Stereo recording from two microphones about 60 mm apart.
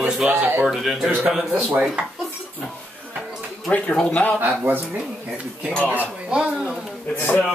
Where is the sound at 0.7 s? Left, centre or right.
Centre.